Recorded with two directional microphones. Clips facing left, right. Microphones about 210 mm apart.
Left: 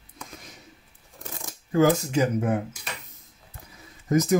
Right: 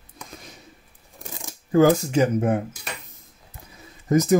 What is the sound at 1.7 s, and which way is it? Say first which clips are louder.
Speech: right 4 dB; 30° right (ahead or behind).